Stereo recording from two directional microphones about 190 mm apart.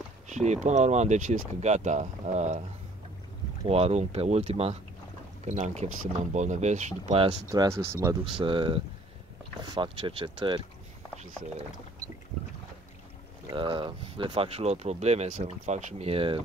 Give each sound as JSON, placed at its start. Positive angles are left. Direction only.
{"t": 0.3, "sound": "speech", "side_deg": -40}
{"t": 3.6, "sound": "speech", "side_deg": -30}
{"t": 7.4, "sound": "speech", "side_deg": -15}
{"t": 13.5, "sound": "speech", "side_deg": -25}